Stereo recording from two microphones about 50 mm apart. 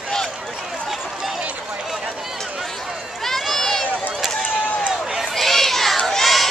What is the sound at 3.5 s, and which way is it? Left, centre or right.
Run, centre.